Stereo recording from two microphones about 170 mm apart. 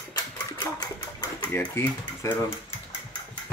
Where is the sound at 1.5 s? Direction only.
10° left (ahead or behind).